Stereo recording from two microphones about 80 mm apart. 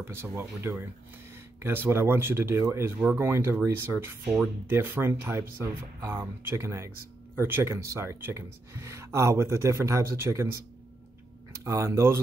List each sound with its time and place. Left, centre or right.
0.0 s speech: right
11.6 s speech: right